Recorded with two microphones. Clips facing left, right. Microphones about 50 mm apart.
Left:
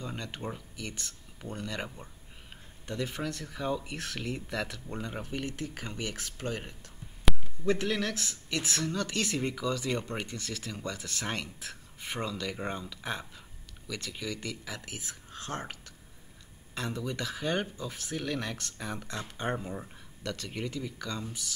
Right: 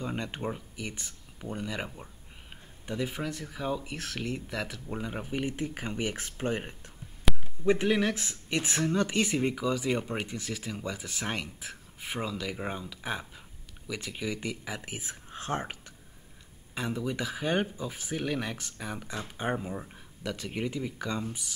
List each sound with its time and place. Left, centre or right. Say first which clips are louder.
0.0 s speech: right 4 dB; right
7.3 s a sound: even; centre
7.6 s speech: right 4 dB; centre